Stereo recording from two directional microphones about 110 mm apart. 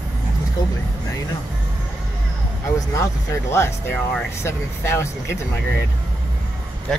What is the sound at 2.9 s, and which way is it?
Speech, 25° left (ahead or behind).